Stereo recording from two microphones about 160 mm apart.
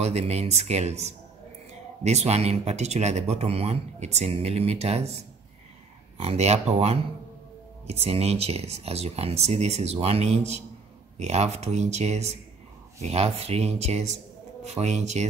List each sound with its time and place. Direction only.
0.0 s speech: 40° right (ahead or behind)